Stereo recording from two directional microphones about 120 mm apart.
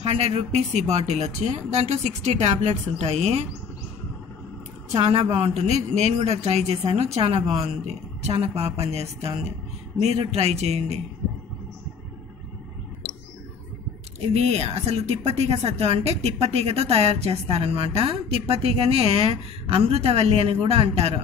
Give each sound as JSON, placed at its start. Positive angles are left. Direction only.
{"t": 0.0, "sound": "speech", "side_deg": -55}
{"t": 4.9, "sound": "speech", "side_deg": -55}
{"t": 14.2, "sound": "speech", "side_deg": -60}